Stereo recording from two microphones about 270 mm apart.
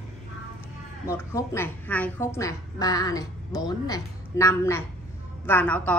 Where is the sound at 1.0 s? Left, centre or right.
Centre.